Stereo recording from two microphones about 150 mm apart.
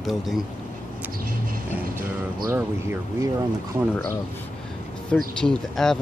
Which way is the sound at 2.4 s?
20° right (ahead or behind).